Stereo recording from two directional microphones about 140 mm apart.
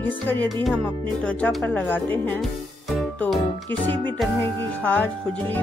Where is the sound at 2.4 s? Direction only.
Centre (ahead or behind).